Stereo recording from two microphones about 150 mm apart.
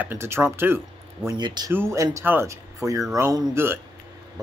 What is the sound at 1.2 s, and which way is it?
Speech, 30° right (ahead or behind).